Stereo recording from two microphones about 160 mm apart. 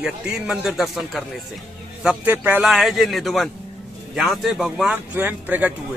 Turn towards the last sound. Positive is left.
turn(degrees=-10)  # may be behind; listen again after turning